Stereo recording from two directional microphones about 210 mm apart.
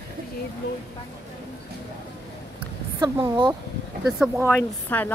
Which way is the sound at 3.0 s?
20° right (ahead or behind).